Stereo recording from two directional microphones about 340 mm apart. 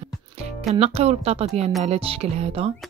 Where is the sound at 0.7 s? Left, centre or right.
Centre.